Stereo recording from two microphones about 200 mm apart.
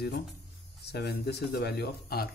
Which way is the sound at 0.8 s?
55° left (ahead or behind).